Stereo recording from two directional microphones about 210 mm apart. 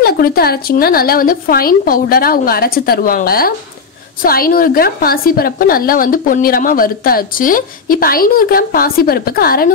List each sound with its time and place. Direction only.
0.0 s a woman's voice: 45° left (ahead or behind)